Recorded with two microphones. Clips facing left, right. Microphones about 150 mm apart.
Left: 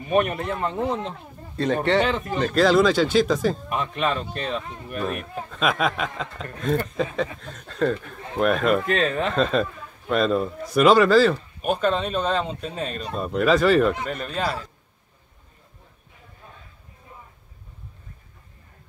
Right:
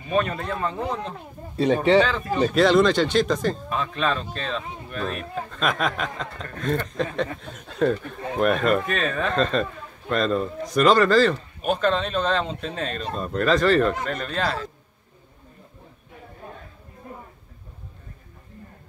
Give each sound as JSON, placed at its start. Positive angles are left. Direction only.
{"t": 0.1, "sound": "speech", "side_deg": 20}
{"t": 1.6, "sound": "speech", "side_deg": -10}
{"t": 2.5, "sound": "a man's voice", "side_deg": 0}
{"t": 3.7, "sound": "a man's voice", "side_deg": 20}
{"t": 8.8, "sound": "speech", "side_deg": 25}
{"t": 9.3, "sound": "speech", "side_deg": 5}
{"t": 16.4, "sound": "a sound", "side_deg": -55}